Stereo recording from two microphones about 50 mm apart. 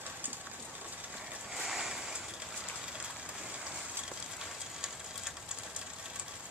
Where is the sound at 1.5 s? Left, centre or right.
Centre.